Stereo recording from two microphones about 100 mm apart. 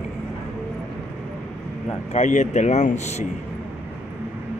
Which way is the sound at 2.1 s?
90° left.